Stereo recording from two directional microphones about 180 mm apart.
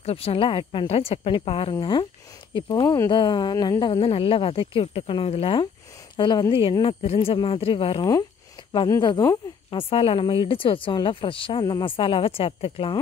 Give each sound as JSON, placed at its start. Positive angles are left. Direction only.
{"t": 0.0, "sound": "speech", "side_deg": 35}